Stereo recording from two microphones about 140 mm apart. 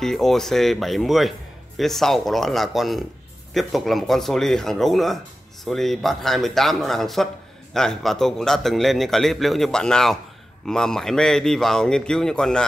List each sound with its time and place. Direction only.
0.0 s a man's voice: 5° left (ahead or behind)